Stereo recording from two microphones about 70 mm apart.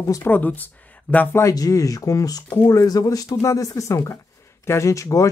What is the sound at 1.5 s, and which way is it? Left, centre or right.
Speech, left.